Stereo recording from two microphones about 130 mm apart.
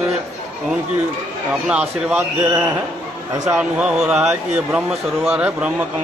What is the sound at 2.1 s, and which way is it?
Speech, 20° right (ahead or behind).